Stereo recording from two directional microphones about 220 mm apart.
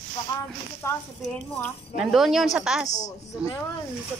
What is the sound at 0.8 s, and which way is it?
Speech, 10° left (ahead or behind).